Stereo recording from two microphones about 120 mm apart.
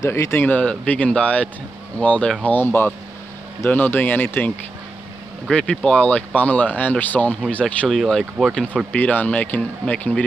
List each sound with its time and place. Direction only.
0.0 s speech: 25° left (ahead or behind)
5.5 s speech: 10° left (ahead or behind)
8.9 s speech: 15° left (ahead or behind)